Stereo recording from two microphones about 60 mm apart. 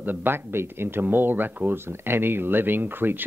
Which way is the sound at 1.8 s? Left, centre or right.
Right.